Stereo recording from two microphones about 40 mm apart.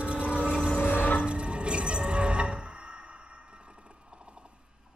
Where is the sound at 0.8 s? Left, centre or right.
Left.